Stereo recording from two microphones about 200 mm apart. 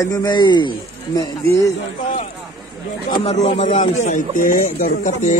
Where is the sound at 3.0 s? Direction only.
30° left (ahead or behind).